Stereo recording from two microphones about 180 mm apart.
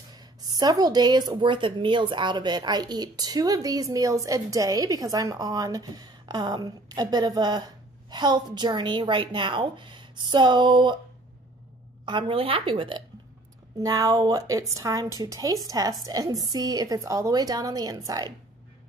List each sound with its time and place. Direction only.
0.1 s a woman's voice: 20° right (ahead or behind)
12.1 s a woman's voice: 30° right (ahead or behind)
13.7 s a woman's voice: 20° right (ahead or behind)